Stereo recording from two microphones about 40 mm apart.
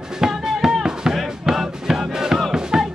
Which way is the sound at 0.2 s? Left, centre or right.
Centre.